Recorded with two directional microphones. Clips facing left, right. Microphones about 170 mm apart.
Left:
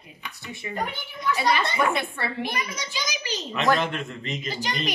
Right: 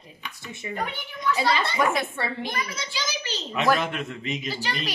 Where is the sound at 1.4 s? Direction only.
15° left (ahead or behind).